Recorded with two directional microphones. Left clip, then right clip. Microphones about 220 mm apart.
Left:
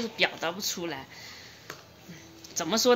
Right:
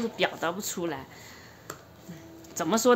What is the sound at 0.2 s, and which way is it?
Speech, 5° right (ahead or behind).